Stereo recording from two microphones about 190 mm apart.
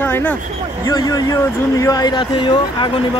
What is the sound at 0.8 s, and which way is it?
Speech, 20° left (ahead or behind).